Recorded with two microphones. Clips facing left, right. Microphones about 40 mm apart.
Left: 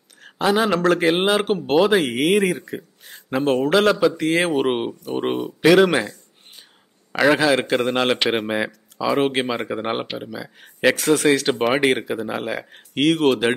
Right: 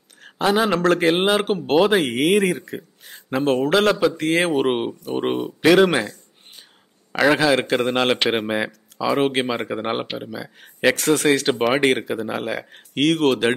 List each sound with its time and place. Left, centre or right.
0.2 s speech: centre